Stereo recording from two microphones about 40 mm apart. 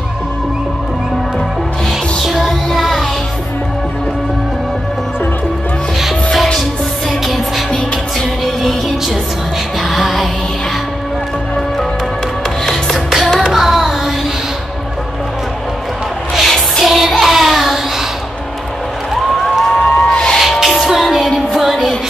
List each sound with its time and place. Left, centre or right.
2.2 s music: centre
7.2 s music: centre
9.8 s music: centre
12.6 s music: centre
16.4 s music: centre
16.8 s child singing: centre
19.6 s a sound: centre
20.1 s music: centre
20.3 s music: centre